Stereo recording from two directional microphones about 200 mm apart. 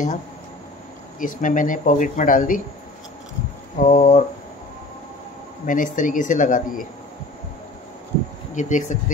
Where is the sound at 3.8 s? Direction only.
40° left (ahead or behind).